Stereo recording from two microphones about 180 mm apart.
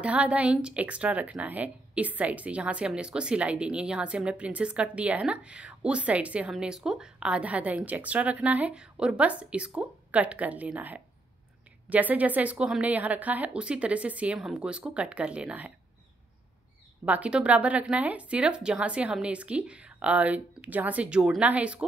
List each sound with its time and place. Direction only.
0.0 s a woman's voice: 5° right (ahead or behind)
17.0 s a woman's voice: 5° right (ahead or behind)